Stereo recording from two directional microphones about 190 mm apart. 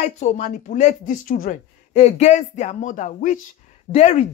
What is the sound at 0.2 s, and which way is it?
Speech, 40° left (ahead or behind).